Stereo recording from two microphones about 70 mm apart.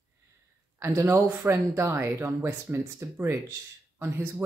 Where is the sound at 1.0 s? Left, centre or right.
Right.